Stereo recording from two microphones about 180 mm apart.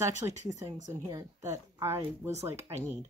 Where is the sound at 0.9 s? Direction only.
20° right (ahead or behind).